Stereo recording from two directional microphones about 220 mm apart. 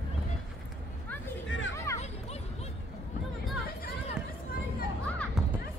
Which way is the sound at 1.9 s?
15° left (ahead or behind).